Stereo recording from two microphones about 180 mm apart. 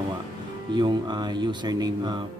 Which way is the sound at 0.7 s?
25° right (ahead or behind).